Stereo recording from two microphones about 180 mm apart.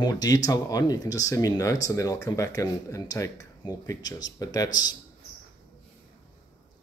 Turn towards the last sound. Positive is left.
turn(degrees=20)  # may be behind; listen again after turning